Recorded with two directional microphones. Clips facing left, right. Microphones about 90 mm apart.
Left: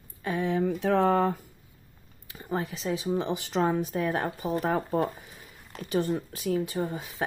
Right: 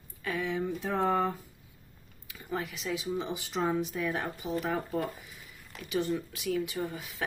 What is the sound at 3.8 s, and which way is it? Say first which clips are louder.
A woman's voice: left 4 dB; 45° left (ahead or behind).